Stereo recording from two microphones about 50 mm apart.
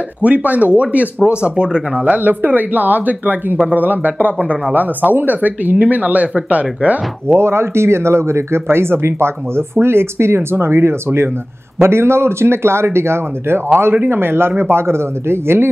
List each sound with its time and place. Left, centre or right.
0.2 s speech: right
2.0 s speech: right
7.2 s speech: right
13.9 s speech: right